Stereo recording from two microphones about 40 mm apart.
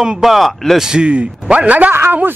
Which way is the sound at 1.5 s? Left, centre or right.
Right.